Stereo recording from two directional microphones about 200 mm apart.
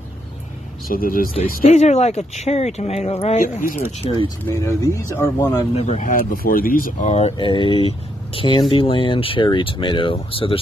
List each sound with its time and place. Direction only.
0.8 s speech: 45° left (ahead or behind)
1.5 s speech: 35° left (ahead or behind)
4.5 s speech: 15° left (ahead or behind)
5.8 s speech: 35° left (ahead or behind)